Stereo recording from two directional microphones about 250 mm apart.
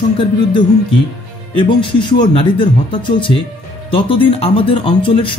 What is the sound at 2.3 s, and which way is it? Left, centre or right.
Speech, left.